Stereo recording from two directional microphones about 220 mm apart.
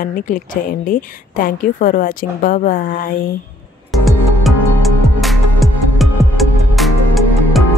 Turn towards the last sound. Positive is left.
turn(degrees=0)  # may be behind; listen again after turning